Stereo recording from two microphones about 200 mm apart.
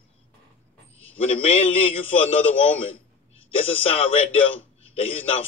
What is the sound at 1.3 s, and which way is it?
A man's voice, 30° left (ahead or behind).